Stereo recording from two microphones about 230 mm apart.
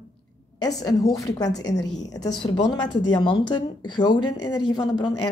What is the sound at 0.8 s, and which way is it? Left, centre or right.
A woman's voice, centre.